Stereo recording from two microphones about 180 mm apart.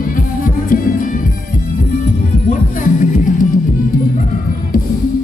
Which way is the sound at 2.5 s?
45° left (ahead or behind).